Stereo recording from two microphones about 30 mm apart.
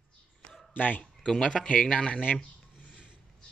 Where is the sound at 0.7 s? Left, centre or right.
Left.